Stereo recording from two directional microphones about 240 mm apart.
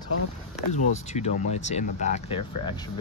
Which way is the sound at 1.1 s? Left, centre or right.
Left.